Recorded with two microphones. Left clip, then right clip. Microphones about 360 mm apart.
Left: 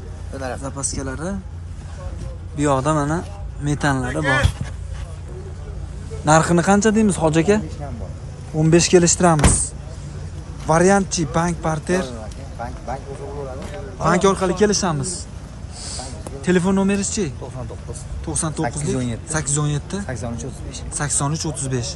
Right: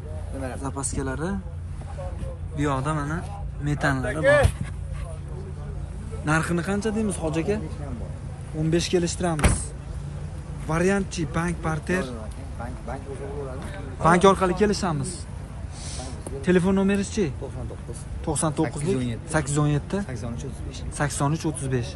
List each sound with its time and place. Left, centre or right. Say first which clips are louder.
0.6 s a man's voice: left 3 dB; centre
2.5 s speech: left 8 dB; centre
6.2 s a man's voice: left 10 dB; centre
8.6 s a man's voice: left 9 dB; left
10.7 s speech: left 9 dB; centre
12.5 s vehicle: left 7 dB; left
14.0 s a man's voice: left 1 dB; centre
15.8 s a sound: left 5 dB; centre
18.2 s speech: even; centre
18.9 s speech: left 2 dB; centre
19.3 s a man's voice: even; centre
20.1 s a man's voice: left 7 dB; left
21.0 s a man's voice: left 2 dB; centre